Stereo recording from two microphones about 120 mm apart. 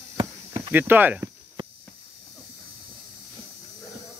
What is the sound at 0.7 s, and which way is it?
Speech, 15° right (ahead or behind).